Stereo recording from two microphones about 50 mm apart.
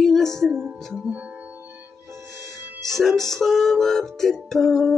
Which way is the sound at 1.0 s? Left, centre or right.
Right.